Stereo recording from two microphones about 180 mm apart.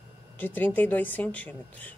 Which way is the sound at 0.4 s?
10° left (ahead or behind).